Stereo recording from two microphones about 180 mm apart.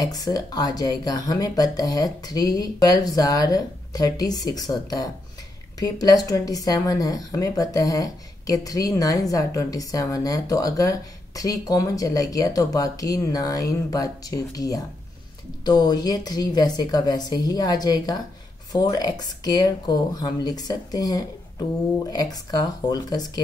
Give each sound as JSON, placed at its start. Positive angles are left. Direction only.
{"t": 0.0, "sound": "speech", "side_deg": 20}